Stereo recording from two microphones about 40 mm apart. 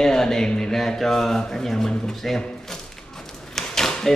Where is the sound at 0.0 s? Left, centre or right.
Centre.